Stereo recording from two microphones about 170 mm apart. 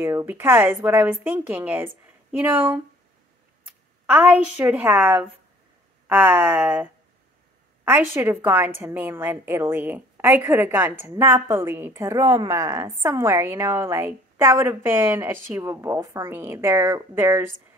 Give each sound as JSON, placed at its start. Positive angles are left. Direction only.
{"t": 0.0, "sound": "a woman's voice", "side_deg": -15}
{"t": 4.0, "sound": "a woman's voice", "side_deg": -10}